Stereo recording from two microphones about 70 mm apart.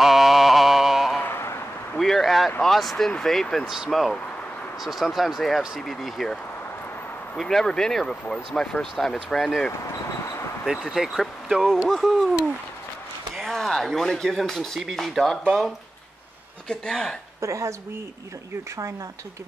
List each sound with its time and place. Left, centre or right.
0.0 s mantra: centre
1.1 s a sound: left
2.0 s a sound: centre
2.6 s speech: centre
3.6 s speech: centre
3.9 s speech: centre
7.3 s speech: centre
10.2 s a sound: left
10.7 s speech: centre
13.4 s speech: centre
16.6 s speech: centre
17.4 s speech: right